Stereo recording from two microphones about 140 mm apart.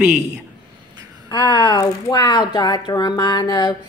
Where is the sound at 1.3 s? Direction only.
30° left (ahead or behind).